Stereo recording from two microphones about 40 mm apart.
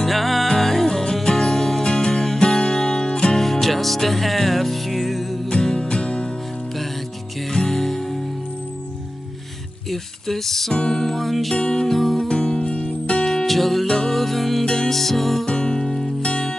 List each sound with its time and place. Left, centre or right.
0.0 s music: centre
1.8 s music: centre
3.6 s music: centre
5.5 s music: left
7.5 s music: centre
9.8 s music: centre
10.7 s music: left
11.0 s music: centre
11.5 s music: left
11.9 s music: centre
12.3 s music: left
13.2 s music: centre
14.6 s music: centre
15.4 s music: left